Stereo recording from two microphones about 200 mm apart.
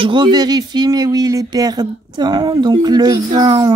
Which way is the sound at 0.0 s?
25° right (ahead or behind).